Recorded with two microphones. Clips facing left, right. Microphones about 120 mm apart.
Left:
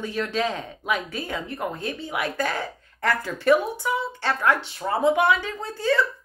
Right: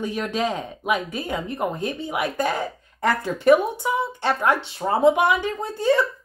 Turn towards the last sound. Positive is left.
turn(degrees=-20)  # may be behind; listen again after turning